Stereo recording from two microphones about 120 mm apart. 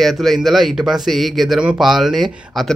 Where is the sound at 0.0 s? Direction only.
Centre (ahead or behind).